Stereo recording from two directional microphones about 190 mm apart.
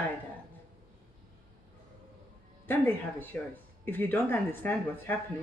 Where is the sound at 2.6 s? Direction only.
10° left (ahead or behind).